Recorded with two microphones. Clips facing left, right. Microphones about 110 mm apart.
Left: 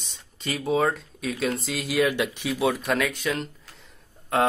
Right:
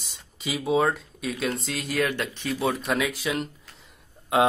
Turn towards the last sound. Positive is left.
turn(degrees=-5)  # may be behind; listen again after turning